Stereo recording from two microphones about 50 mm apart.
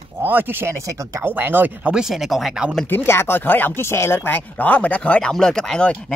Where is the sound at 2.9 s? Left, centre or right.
Left.